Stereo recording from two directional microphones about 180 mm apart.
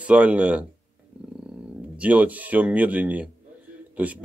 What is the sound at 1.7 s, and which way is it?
Speech, 10° right (ahead or behind).